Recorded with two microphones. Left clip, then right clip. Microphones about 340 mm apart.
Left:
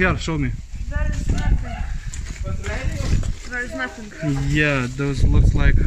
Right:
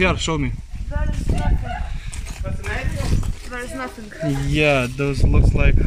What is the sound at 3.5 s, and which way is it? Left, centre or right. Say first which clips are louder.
Speech: left 3 dB; centre.